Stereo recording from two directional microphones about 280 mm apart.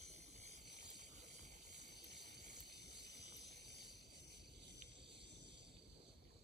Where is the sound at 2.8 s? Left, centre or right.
Left.